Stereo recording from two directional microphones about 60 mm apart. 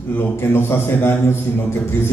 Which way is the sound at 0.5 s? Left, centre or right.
Left.